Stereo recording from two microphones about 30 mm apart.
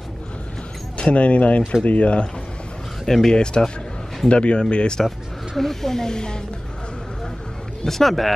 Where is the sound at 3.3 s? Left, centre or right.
Left.